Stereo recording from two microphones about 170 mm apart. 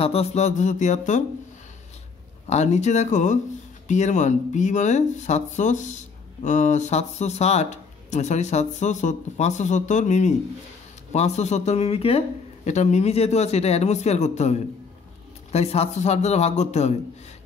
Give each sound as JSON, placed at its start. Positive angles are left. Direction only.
{"t": 0.0, "sound": "speech", "side_deg": 35}
{"t": 2.4, "sound": "a man's voice", "side_deg": 40}